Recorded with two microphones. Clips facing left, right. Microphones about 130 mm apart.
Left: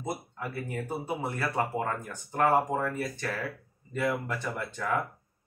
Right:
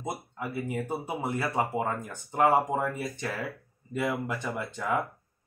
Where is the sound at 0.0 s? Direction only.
15° right (ahead or behind).